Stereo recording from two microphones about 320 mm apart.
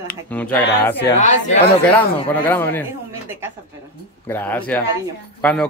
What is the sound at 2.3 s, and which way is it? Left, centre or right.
Speech, centre.